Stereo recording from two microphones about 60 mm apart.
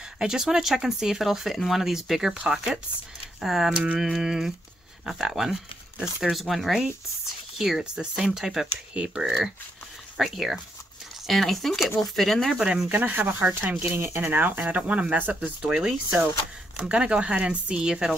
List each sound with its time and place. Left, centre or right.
0.2 s speech: centre
12.5 s speech: centre
12.9 s speech: right
14.2 s speech: right
15.6 s speech: centre